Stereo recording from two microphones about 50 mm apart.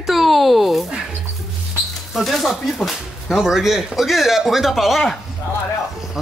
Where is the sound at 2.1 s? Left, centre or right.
Centre.